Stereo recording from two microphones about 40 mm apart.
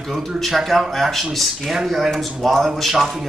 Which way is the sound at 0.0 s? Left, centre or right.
Centre.